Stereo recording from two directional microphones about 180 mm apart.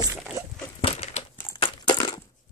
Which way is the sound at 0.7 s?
35° left (ahead or behind).